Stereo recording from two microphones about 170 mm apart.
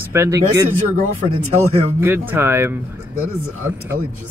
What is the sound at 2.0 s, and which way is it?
Speech, 15° right (ahead or behind).